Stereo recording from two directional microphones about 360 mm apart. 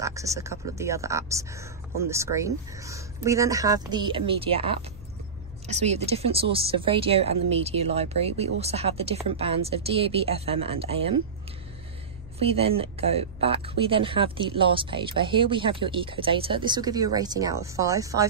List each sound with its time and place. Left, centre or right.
0.0 s speech: centre
12.4 s speech: centre